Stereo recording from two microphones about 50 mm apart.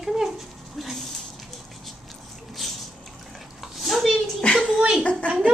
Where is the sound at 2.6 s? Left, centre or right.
Centre.